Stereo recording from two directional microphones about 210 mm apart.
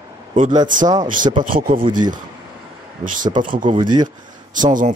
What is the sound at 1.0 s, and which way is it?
Speech, 40° right (ahead or behind).